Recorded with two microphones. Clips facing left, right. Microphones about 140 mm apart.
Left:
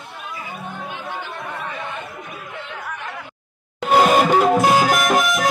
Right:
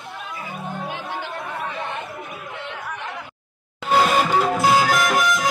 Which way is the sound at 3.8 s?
20° left (ahead or behind).